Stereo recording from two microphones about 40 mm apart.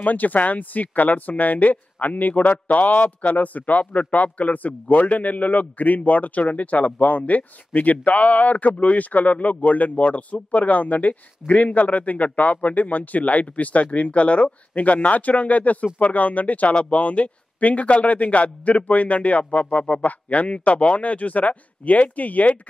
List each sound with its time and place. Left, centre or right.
0.0 s a man's voice: left